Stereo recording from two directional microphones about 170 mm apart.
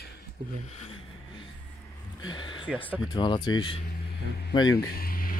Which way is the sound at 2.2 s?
25° left (ahead or behind).